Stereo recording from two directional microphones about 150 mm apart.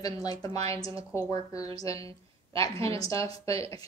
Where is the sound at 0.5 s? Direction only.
40° right (ahead or behind).